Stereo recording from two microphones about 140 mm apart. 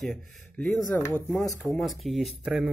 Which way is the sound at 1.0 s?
15° left (ahead or behind).